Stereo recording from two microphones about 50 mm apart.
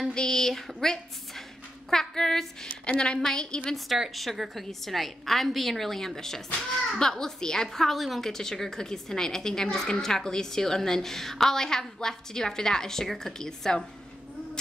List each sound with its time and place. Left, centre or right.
0.1 s a woman's voice: centre
2.8 s a woman's voice: left
4.1 s a woman's voice: centre